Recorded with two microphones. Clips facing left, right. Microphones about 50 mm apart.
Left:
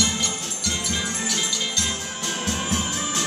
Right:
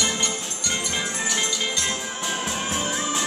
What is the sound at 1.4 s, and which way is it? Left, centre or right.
Music, centre.